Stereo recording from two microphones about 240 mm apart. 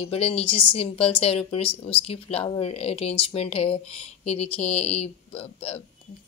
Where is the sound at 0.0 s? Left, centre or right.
Left.